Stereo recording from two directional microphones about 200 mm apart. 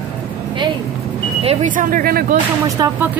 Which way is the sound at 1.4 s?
35° right (ahead or behind).